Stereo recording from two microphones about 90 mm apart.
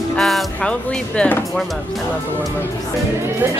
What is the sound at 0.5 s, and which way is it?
Speech, 10° left (ahead or behind).